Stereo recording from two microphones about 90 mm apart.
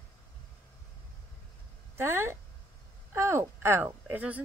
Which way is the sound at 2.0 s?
30° right (ahead or behind).